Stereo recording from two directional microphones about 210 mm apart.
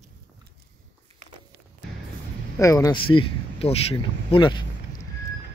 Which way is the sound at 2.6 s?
15° left (ahead or behind).